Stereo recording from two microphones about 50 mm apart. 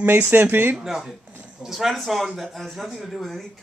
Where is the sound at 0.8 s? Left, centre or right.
Centre.